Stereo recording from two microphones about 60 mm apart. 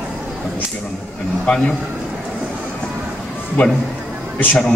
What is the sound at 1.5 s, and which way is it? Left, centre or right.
Speech, centre.